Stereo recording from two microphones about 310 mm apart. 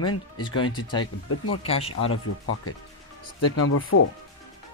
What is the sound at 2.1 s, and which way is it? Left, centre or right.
Speech, left.